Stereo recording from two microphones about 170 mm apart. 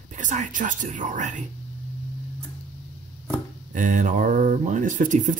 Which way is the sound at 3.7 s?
50° right (ahead or behind).